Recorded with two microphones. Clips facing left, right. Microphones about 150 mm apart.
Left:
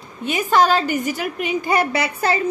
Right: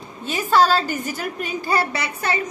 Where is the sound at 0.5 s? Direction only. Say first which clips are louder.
Left 1 dB; 15° left (ahead or behind).